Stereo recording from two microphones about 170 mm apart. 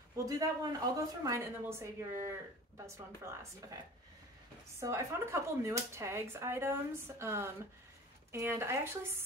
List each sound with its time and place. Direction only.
0.2 s speech: 20° right (ahead or behind)
4.7 s speech: 15° right (ahead or behind)